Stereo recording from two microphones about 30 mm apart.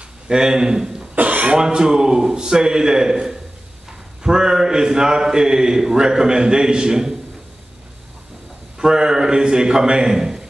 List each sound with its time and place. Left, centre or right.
0.3 s a man's voice: right
1.2 s cough: right
1.6 s a man's voice: right
8.7 s a man's voice: right